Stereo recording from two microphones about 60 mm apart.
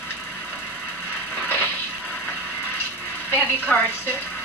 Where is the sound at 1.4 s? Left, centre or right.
Left.